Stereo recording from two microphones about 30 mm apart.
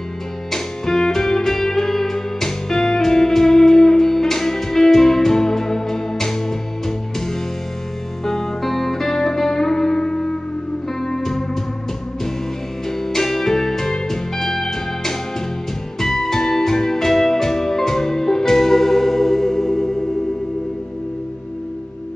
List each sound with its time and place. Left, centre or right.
0.5 s music: centre
8.3 s music: centre
11.0 s music: centre
13.0 s music: centre